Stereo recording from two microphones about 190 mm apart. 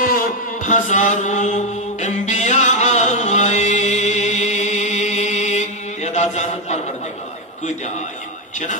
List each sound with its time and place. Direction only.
0.0 s chant: 45° left (ahead or behind)